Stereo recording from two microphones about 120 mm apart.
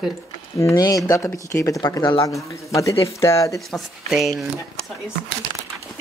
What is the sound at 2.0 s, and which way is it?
Speech, 40° left (ahead or behind).